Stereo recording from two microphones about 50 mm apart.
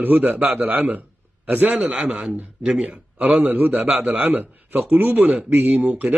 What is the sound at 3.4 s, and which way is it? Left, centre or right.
A man's voice, right.